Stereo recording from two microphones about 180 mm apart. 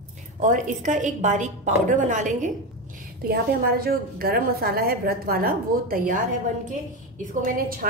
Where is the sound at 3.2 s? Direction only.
55° right (ahead or behind).